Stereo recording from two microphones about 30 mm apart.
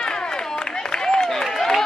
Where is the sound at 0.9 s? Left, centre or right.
Left.